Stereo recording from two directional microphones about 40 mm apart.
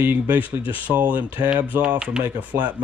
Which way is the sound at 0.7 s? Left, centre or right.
Right.